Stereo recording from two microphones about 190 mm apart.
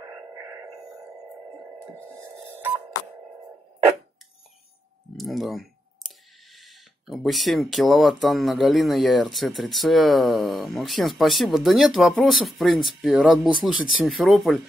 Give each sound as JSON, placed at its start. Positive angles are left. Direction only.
{"t": 0.0, "sound": "radio", "side_deg": -15}
{"t": 5.1, "sound": "speech", "side_deg": 0}